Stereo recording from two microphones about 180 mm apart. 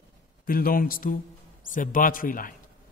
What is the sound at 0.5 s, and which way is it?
Speech, 50° left (ahead or behind).